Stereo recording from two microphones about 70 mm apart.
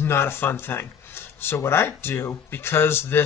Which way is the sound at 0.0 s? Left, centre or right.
Left.